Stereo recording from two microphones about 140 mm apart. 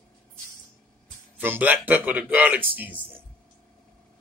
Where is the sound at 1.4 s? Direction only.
15° right (ahead or behind).